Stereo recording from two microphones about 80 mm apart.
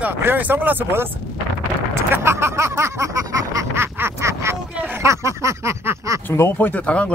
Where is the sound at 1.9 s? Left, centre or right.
Right.